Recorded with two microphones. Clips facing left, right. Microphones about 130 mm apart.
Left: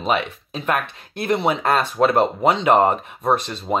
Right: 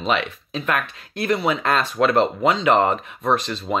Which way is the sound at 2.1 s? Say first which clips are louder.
Left 1 dB; 15° left (ahead or behind).